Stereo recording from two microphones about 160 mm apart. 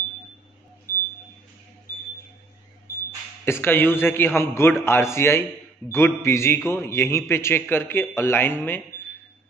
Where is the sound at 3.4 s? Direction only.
15° left (ahead or behind).